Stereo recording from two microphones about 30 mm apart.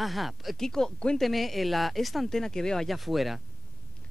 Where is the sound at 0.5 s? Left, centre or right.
Centre.